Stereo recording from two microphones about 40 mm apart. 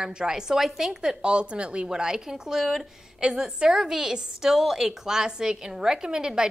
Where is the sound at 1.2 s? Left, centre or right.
Right.